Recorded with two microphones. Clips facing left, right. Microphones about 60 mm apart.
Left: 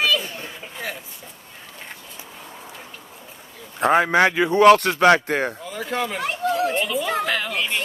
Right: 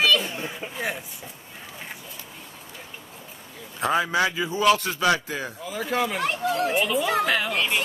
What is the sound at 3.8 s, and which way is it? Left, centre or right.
A man's voice, left.